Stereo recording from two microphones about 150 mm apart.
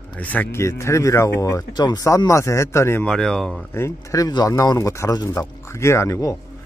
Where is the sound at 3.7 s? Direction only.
20° left (ahead or behind).